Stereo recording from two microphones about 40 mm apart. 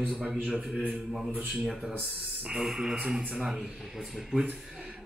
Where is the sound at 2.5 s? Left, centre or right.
Centre.